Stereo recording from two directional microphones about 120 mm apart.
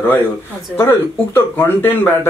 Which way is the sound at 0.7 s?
20° left (ahead or behind).